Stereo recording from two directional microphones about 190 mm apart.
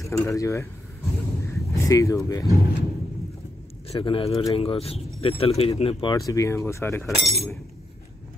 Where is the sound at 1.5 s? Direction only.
15° left (ahead or behind).